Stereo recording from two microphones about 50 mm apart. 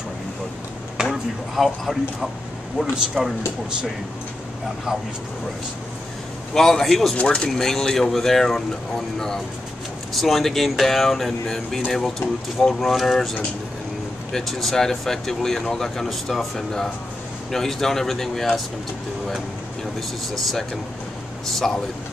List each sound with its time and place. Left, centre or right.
1.5 s speech: centre
6.5 s speech: centre
7.2 s speech: centre
7.4 s speech: centre
14.3 s speech: centre
20.3 s speech: centre
21.6 s speech: centre